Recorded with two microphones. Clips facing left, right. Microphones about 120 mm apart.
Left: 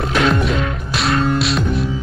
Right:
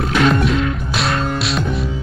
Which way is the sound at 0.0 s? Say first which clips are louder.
Right 1 dB; centre (ahead or behind).